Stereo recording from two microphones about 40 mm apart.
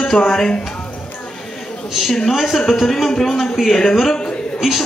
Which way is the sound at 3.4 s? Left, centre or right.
Centre.